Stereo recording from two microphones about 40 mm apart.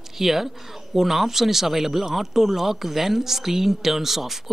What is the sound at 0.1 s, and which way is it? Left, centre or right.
Speech, centre.